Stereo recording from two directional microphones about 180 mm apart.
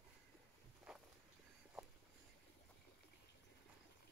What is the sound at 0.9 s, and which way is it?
Walk, centre (ahead or behind).